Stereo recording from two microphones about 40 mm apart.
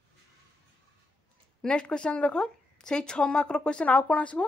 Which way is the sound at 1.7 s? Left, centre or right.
Left.